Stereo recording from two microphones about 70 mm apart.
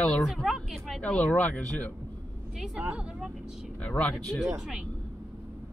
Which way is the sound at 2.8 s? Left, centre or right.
Right.